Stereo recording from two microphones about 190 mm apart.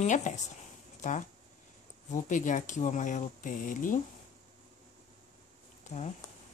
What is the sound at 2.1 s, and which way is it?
Speech, 40° left (ahead or behind).